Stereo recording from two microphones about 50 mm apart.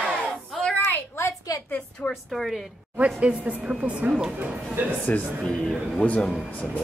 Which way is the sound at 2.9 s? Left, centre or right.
Right.